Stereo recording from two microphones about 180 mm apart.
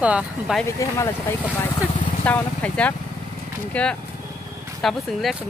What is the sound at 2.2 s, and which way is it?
Speech, 5° left (ahead or behind).